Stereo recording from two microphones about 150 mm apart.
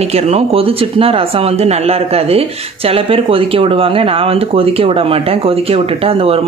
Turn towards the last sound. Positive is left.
turn(degrees=-40)  # may be behind; listen again after turning